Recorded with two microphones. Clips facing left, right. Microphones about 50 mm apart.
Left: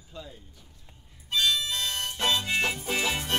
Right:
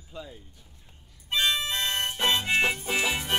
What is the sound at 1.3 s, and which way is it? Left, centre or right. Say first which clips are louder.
Music: right 1 dB; right.